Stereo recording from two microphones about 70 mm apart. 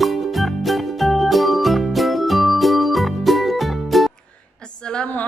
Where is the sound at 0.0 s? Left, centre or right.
Centre.